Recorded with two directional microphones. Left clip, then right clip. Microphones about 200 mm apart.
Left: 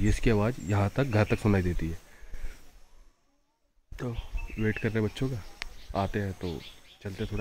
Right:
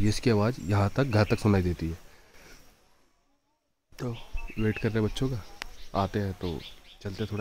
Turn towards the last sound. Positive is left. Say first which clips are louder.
# right 1 dB
turn(degrees=-15)  # may be behind; listen again after turning